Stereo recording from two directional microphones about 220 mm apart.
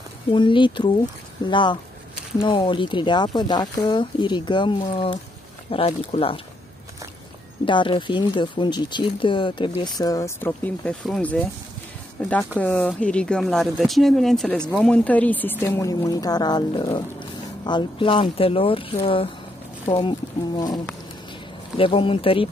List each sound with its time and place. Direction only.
0.3 s speech: 20° left (ahead or behind)
7.6 s speech: 20° left (ahead or behind)